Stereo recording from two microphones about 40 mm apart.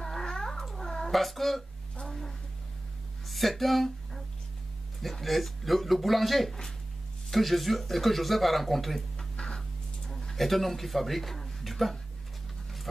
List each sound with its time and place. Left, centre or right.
0.0 s cat: centre
1.1 s speech: centre
9.4 s a sound: centre
10.2 s speech: centre